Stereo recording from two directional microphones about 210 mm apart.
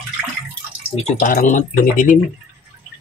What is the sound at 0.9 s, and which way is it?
Speech, 35° left (ahead or behind).